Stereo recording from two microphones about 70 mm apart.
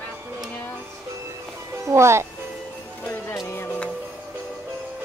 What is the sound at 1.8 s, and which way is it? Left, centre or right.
Speech, right.